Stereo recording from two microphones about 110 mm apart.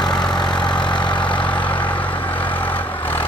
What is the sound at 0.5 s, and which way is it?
Vehicle, 45° left (ahead or behind).